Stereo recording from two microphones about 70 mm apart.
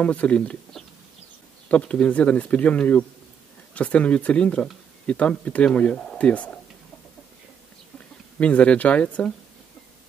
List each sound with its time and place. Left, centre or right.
0.0 s speech: centre
1.7 s speech: centre
8.4 s speech: centre